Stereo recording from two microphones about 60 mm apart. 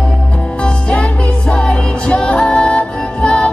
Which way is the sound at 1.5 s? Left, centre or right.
Centre.